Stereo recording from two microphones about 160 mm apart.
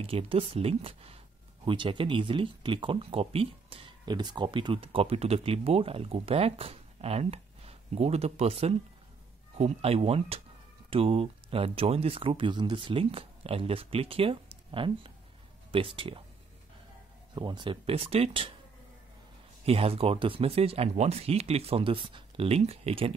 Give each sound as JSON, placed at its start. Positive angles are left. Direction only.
{"t": 0.0, "sound": "speech", "side_deg": -35}
{"t": 17.4, "sound": "speech", "side_deg": -30}
{"t": 19.6, "sound": "speech", "side_deg": -40}